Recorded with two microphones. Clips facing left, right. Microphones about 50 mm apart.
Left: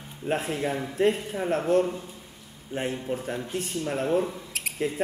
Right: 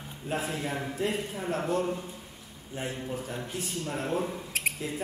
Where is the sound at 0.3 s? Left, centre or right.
Left.